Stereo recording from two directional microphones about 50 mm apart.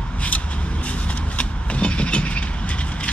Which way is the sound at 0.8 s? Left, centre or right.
Left.